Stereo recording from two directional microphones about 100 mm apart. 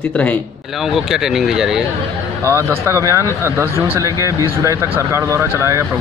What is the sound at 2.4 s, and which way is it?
Speech, 25° right (ahead or behind).